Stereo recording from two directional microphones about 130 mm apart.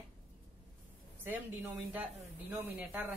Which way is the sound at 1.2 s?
15° right (ahead or behind).